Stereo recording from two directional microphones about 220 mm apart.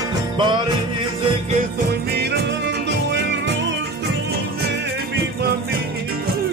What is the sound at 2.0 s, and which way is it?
Music, 45° right (ahead or behind).